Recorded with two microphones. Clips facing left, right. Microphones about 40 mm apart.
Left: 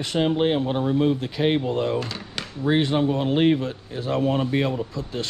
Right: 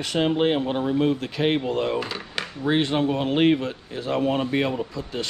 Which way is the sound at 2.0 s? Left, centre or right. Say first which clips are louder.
Right 2 dB; centre.